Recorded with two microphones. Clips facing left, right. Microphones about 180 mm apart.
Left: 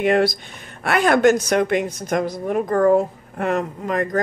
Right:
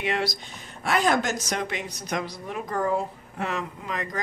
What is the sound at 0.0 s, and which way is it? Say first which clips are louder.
Speech: left 10 dB; 50° left (ahead or behind).